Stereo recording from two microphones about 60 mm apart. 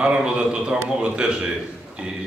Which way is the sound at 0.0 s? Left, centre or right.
Centre.